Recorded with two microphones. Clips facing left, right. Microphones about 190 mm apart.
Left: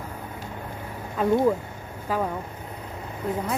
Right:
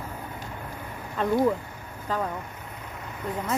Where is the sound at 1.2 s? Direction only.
5° left (ahead or behind).